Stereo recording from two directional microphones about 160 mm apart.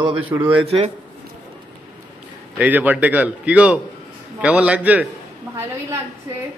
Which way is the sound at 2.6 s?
10° right (ahead or behind).